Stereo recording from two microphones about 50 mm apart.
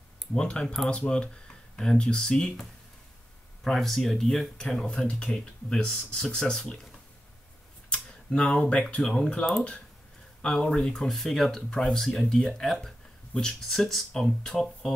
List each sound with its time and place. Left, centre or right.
0.3 s speech: centre
3.6 s speech: centre
8.4 s speech: left
9.0 s speech: centre
10.4 s speech: centre
11.7 s speech: centre